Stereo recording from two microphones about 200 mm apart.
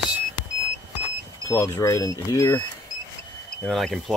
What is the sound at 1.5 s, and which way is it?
Speech, 15° left (ahead or behind).